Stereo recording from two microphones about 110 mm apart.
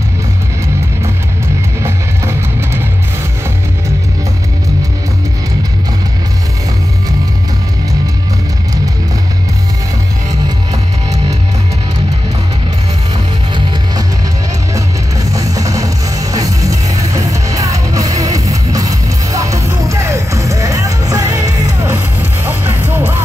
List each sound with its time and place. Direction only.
1.8 s music: 25° right (ahead or behind)
10.7 s music: 35° right (ahead or behind)
15.3 s music: 30° right (ahead or behind)